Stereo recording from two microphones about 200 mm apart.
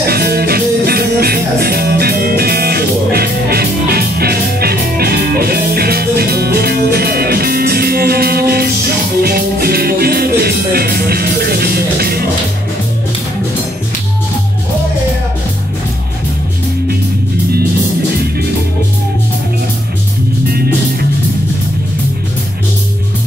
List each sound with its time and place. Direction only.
0.0 s music: 50° right (ahead or behind)
20.5 s music: 50° right (ahead or behind)